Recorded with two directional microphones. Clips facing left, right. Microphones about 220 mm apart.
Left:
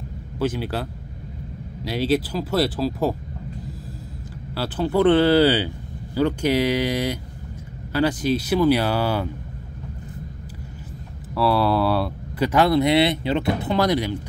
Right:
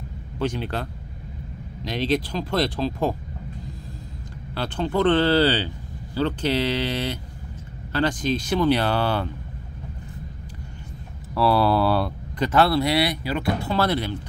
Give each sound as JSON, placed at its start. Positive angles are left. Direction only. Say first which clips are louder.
{"t": 0.4, "sound": "speech", "louder": "left 2 dB", "side_deg": 5}
{"t": 1.9, "sound": "speech", "louder": "left 2 dB", "side_deg": 5}
{"t": 4.6, "sound": "speech", "louder": "left 3 dB", "side_deg": 5}
{"t": 11.3, "sound": "speech", "louder": "even", "side_deg": 0}
{"t": 12.4, "sound": "speech", "louder": "left 2 dB", "side_deg": 15}